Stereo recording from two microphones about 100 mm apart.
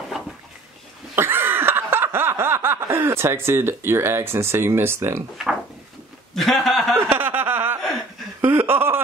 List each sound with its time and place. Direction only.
1.1 s snicker: 25° right (ahead or behind)
6.3 s speech: centre (ahead or behind)
7.0 s a sound: 20° right (ahead or behind)